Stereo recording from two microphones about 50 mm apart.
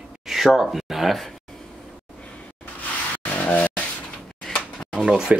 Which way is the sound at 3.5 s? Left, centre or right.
Left.